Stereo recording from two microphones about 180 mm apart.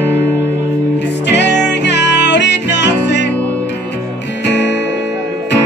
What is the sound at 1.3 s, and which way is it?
Music, 75° left (ahead or behind).